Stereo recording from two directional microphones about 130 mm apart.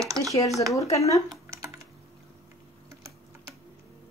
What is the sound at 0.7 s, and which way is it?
Speech, 25° left (ahead or behind).